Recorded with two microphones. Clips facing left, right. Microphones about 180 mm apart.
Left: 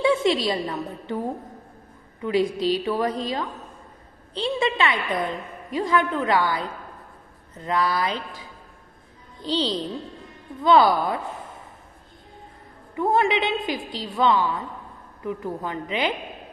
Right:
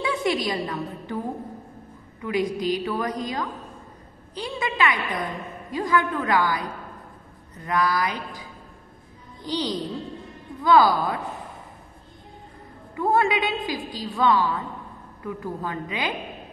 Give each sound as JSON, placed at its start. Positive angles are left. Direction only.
{"t": 0.0, "sound": "a woman's voice", "side_deg": 25}
{"t": 2.2, "sound": "a woman's voice", "side_deg": 30}
{"t": 12.9, "sound": "a woman's voice", "side_deg": 20}